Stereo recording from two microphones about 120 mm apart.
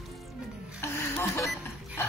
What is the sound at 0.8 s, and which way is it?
Music, 20° left (ahead or behind).